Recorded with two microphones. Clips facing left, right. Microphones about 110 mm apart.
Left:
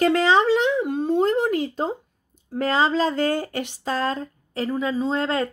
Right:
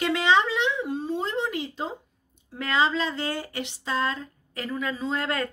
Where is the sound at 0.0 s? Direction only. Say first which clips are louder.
Left 4 dB; 40° left (ahead or behind).